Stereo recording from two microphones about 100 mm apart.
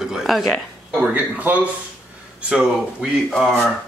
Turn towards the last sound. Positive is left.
turn(degrees=5)  # may be behind; listen again after turning